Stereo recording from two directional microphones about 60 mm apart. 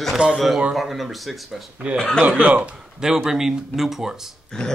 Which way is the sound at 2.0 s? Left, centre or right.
Centre.